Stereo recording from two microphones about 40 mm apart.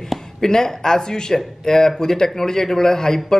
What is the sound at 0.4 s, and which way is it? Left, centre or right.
A man's voice, centre.